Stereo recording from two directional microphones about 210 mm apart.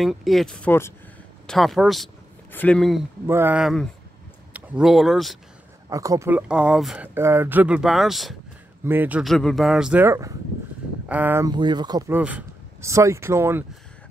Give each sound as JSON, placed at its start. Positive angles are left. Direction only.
{"t": 0.0, "sound": "speech", "side_deg": 0}
{"t": 3.3, "sound": "speech", "side_deg": -10}
{"t": 5.9, "sound": "speech", "side_deg": -15}
{"t": 12.1, "sound": "speech", "side_deg": -5}